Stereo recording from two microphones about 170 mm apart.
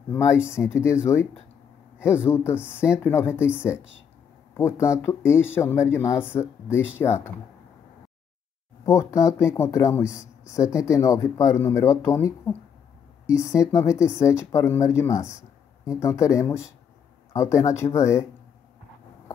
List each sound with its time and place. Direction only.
0.1 s speech: 15° left (ahead or behind)
4.6 s speech: 15° left (ahead or behind)
8.8 s speech: 20° left (ahead or behind)